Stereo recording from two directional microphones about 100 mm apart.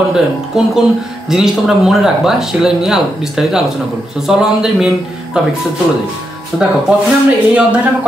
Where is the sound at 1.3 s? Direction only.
5° right (ahead or behind).